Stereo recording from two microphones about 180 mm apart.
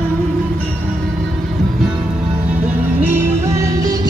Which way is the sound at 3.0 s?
15° right (ahead or behind).